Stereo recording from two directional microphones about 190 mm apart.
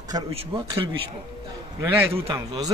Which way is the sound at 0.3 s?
30° right (ahead or behind).